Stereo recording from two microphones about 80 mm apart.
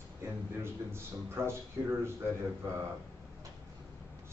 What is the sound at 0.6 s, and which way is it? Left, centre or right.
A man's voice, right.